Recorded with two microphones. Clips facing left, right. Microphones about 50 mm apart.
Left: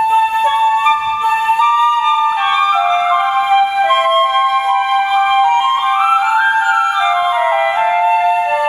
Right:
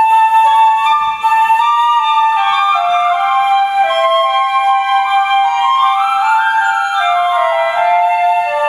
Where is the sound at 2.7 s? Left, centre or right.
Left.